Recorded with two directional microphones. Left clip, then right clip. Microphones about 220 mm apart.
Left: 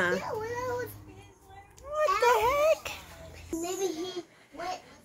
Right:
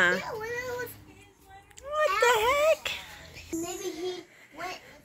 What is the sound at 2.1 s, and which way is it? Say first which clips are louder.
Baby cry: right 1 dB; centre (ahead or behind).